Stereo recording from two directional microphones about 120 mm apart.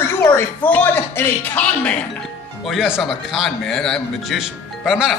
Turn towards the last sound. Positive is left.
turn(degrees=-5)  # may be behind; listen again after turning